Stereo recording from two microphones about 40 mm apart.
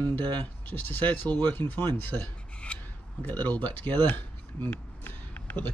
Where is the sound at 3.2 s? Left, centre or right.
Left.